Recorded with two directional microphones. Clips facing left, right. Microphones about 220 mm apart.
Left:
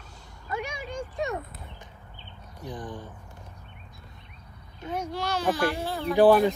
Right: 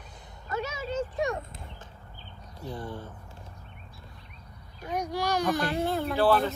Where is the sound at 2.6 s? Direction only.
15° left (ahead or behind).